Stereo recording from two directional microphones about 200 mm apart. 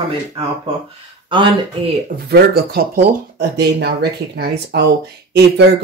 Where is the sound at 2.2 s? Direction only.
50° right (ahead or behind).